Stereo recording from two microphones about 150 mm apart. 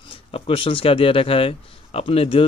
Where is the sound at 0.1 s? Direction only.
35° left (ahead or behind).